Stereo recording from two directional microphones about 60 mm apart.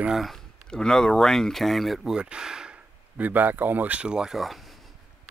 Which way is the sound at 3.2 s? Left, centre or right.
Right.